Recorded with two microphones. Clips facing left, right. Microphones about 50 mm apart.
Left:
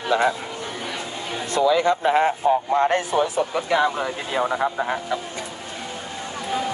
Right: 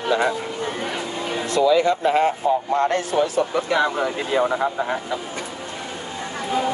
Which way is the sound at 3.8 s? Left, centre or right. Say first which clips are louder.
Right 1 dB; centre.